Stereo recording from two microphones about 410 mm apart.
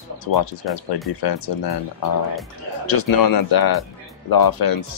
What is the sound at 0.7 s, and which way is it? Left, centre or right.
Speech, centre.